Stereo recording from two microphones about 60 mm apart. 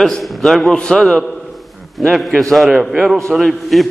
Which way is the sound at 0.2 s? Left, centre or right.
Centre.